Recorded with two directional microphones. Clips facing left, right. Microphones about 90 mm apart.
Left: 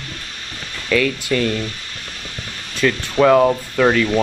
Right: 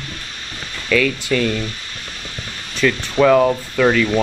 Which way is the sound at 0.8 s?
30° left (ahead or behind).